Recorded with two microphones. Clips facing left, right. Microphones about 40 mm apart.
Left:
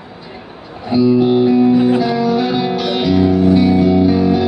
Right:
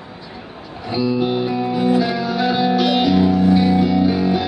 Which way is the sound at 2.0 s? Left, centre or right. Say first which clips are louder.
Left 4 dB; centre.